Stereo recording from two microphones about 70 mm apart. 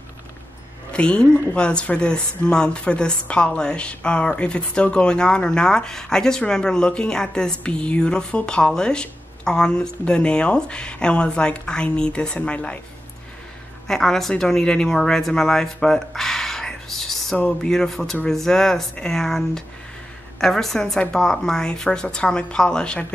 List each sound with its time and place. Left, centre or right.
0.9 s speech: centre
13.8 s speech: centre